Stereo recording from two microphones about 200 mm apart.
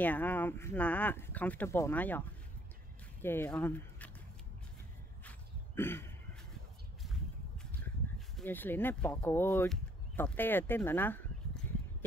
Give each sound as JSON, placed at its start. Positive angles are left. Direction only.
{"t": 0.0, "sound": "speech", "side_deg": 10}
{"t": 5.8, "sound": "speech", "side_deg": 10}
{"t": 8.4, "sound": "speech", "side_deg": 10}